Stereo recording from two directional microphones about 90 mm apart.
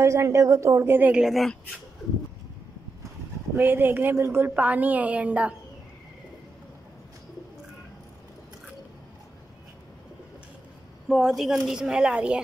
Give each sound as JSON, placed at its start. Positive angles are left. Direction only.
{"t": 0.0, "sound": "a woman's voice", "side_deg": -35}
{"t": 1.1, "sound": "speech", "side_deg": 0}
{"t": 3.5, "sound": "a woman's voice", "side_deg": -20}
{"t": 11.1, "sound": "a woman's voice", "side_deg": -5}